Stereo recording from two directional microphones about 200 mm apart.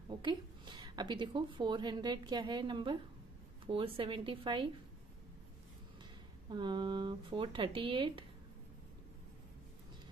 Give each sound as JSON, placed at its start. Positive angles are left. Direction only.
{"t": 0.1, "sound": "a woman's voice", "side_deg": -20}
{"t": 6.5, "sound": "speech", "side_deg": -20}